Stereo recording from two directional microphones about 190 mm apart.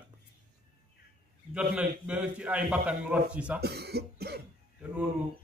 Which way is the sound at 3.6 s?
60° right (ahead or behind).